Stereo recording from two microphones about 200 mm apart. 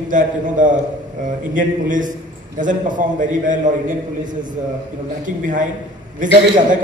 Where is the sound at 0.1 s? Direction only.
40° right (ahead or behind).